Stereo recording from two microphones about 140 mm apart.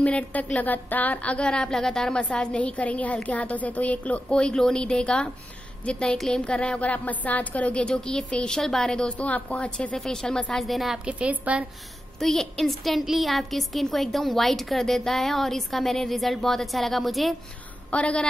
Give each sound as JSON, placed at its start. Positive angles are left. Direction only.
{"t": 0.0, "sound": "a woman's voice", "side_deg": 10}
{"t": 12.2, "sound": "a woman's voice", "side_deg": 5}